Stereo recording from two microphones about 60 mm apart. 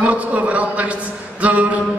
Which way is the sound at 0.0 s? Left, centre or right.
Right.